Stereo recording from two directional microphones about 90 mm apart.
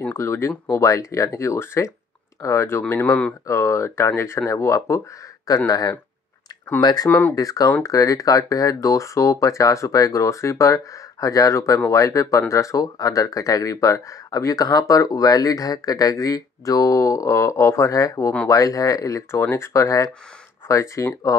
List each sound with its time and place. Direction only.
0.0 s speech: 30° left (ahead or behind); by 7.1 s 50° left (ahead or behind)
7.1 s speech: 20° left (ahead or behind)
7.3 s speech: 40° left (ahead or behind)